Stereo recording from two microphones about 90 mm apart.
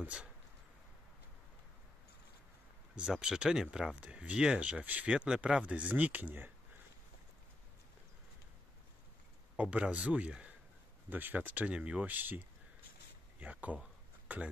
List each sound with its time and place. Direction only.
0.0 s speech: 15° right (ahead or behind)
3.0 s speech: 5° right (ahead or behind)
9.6 s speech: 15° right (ahead or behind)
13.4 s a sound: 15° right (ahead or behind)